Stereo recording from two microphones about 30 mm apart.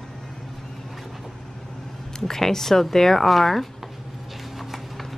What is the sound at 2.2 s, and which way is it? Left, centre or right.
Speech, centre.